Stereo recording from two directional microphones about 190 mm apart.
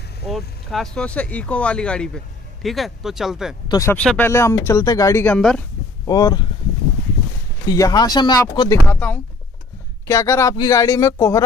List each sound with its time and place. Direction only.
0.3 s speech: centre (ahead or behind)
3.6 s speech: 20° left (ahead or behind)
3.9 s speech: 5° left (ahead or behind)
6.0 s speech: 20° left (ahead or behind)
7.6 s speech: 20° left (ahead or behind)